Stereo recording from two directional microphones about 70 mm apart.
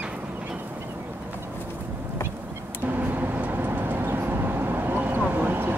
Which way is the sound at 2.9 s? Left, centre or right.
Right.